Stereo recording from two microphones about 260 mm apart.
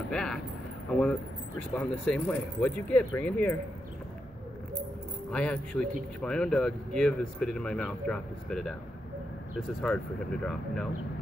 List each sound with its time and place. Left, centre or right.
0.1 s speech: centre
1.6 s speech: centre
5.3 s speech: centre